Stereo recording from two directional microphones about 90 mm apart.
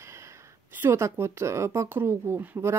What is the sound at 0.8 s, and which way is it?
Speech, 30° right (ahead or behind).